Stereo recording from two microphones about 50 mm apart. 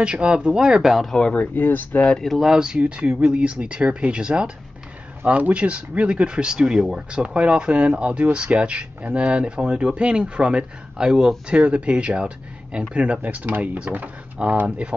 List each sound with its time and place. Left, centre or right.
0.0 s speech: right
0.8 s speech: centre
1.3 s speech: left
1.6 s speech: left
2.4 s speech: centre
11.5 s speech: right